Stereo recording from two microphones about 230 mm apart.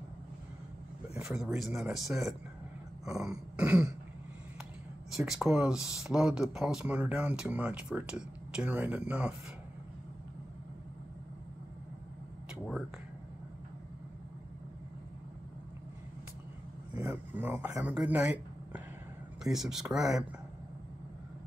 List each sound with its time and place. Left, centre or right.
1.1 s speech: centre
5.1 s speech: centre
16.9 s speech: centre